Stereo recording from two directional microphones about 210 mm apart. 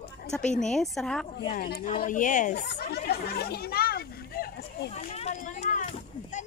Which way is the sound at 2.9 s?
50° left (ahead or behind).